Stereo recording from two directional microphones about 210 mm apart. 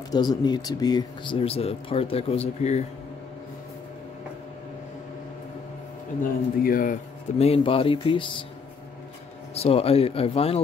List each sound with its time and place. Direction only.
0.1 s speech: 20° left (ahead or behind)
6.6 s speech: 40° left (ahead or behind); by 8.4 s 25° left (ahead or behind)
9.5 s speech: 30° left (ahead or behind)